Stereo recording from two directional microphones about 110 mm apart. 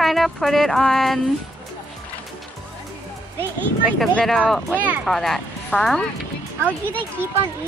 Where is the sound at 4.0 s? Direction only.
5° left (ahead or behind).